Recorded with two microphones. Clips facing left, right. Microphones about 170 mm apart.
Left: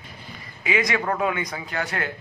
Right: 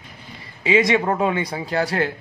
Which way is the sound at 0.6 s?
25° right (ahead or behind).